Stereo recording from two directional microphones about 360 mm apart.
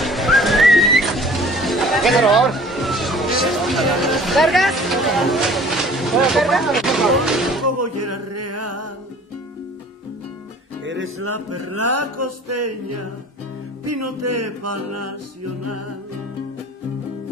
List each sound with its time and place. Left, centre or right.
0.0 s music: centre
7.6 s music: right
10.8 s music: right